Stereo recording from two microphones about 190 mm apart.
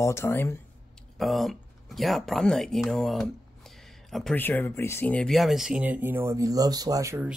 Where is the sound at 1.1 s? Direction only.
Centre (ahead or behind); by 7.3 s 15° right (ahead or behind).